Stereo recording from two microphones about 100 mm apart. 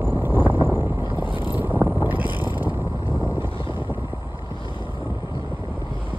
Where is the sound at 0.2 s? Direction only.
20° right (ahead or behind).